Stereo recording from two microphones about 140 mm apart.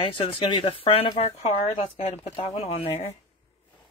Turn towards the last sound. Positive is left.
turn(degrees=45)  # may be behind; listen again after turning